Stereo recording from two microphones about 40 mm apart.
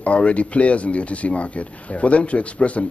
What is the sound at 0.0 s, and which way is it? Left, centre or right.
Speech, left.